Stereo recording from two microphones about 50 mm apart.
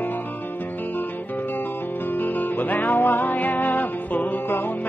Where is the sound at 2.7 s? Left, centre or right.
Left.